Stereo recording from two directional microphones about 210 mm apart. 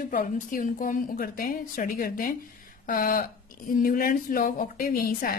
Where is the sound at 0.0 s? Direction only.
40° left (ahead or behind).